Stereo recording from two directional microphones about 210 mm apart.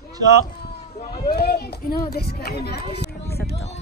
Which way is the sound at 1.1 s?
45° left (ahead or behind).